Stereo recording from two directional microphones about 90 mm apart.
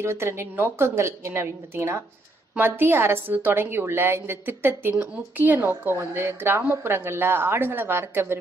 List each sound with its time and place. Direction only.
0.0 s a woman's voice: 30° right (ahead or behind)
4.9 s a woman's voice: 15° right (ahead or behind)